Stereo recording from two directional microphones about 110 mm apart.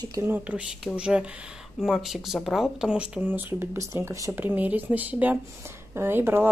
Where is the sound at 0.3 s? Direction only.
15° right (ahead or behind).